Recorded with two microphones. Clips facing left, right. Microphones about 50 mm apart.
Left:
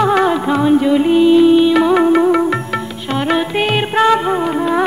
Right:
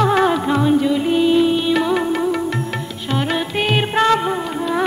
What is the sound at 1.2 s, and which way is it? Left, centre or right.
Music, centre.